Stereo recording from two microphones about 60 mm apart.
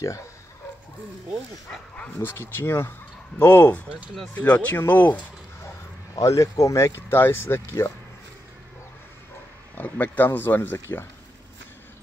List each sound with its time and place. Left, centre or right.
2.5 s speech: left
6.1 s speech: left
7.0 s speech: left
9.8 s speech: left